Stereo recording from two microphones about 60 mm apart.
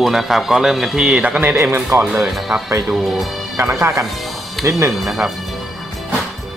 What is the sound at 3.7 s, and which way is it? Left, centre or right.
Speech, right.